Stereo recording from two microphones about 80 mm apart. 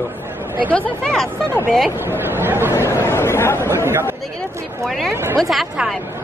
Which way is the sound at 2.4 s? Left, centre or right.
Right.